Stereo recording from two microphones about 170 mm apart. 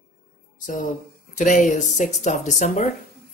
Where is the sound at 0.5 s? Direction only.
50° left (ahead or behind).